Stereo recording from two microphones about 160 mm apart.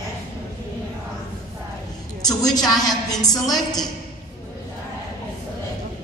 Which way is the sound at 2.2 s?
25° left (ahead or behind).